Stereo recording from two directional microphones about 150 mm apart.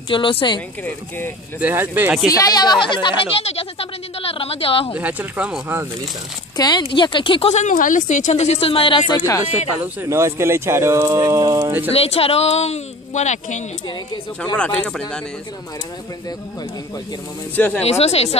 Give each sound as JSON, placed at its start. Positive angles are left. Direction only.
{"t": 0.1, "sound": "speech", "side_deg": 35}
{"t": 0.8, "sound": "speech", "side_deg": 15}
{"t": 1.6, "sound": "speech", "side_deg": -15}
{"t": 2.2, "sound": "speech", "side_deg": 25}
{"t": 4.9, "sound": "speech", "side_deg": -10}
{"t": 6.5, "sound": "speech", "side_deg": 25}
{"t": 7.5, "sound": "a woman's voice", "side_deg": 60}
{"t": 9.9, "sound": "speech", "side_deg": -20}
{"t": 11.9, "sound": "a woman's voice", "side_deg": 40}
{"t": 14.6, "sound": "speech", "side_deg": 5}
{"t": 17.6, "sound": "speech", "side_deg": 10}
{"t": 17.8, "sound": "a woman's voice", "side_deg": 45}